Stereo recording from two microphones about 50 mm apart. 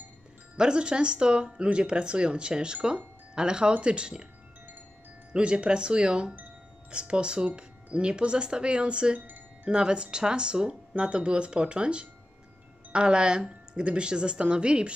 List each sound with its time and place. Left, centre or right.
0.6 s speech: centre
5.3 s speech: right